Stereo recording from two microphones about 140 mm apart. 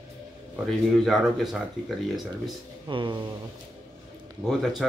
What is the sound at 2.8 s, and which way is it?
Speech, 35° right (ahead or behind).